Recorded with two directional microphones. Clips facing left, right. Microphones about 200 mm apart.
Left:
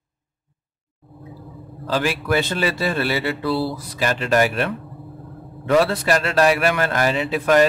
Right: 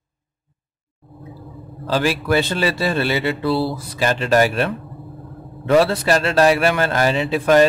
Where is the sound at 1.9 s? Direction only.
30° right (ahead or behind).